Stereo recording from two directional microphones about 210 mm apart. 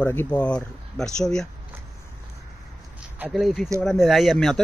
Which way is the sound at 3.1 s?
5° right (ahead or behind).